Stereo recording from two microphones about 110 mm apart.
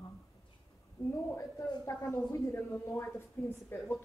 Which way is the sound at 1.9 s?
25° left (ahead or behind).